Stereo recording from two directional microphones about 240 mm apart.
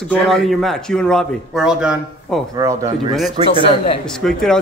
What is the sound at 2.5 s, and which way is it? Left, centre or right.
Speech, centre.